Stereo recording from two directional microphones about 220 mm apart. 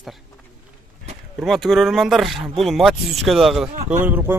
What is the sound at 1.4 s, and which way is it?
Speech, centre (ahead or behind).